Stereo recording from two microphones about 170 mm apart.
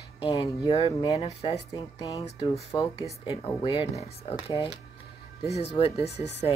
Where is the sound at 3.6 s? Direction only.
30° left (ahead or behind).